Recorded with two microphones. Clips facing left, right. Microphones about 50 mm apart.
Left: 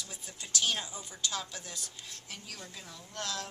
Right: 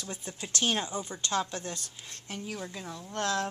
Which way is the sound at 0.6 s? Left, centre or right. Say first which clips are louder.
Right 4 dB; right.